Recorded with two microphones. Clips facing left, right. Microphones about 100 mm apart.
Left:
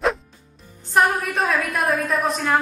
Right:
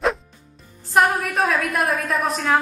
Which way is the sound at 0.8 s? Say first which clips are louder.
Right 1 dB; centre (ahead or behind).